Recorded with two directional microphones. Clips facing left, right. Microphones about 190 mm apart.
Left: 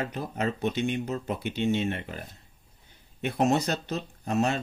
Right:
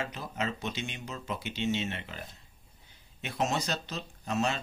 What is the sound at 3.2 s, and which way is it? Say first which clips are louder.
Speech: left 7 dB; 55° left (ahead or behind).